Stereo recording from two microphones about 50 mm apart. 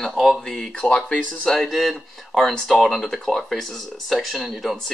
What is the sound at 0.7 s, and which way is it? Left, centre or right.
Speech, left.